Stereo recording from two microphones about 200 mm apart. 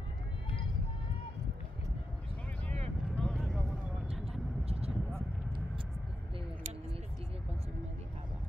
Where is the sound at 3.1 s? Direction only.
Centre (ahead or behind).